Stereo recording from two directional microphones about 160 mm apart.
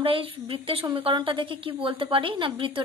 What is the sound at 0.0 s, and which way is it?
A woman's voice, 35° right (ahead or behind).